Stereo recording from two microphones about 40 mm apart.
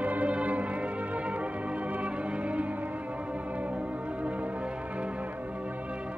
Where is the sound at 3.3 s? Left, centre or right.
Right.